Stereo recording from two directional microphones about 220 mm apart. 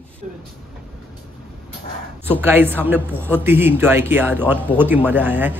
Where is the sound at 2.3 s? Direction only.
10° right (ahead or behind).